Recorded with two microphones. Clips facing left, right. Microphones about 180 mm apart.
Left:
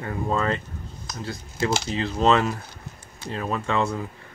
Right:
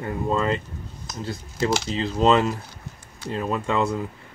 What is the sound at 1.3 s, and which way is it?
Speech, 30° right (ahead or behind).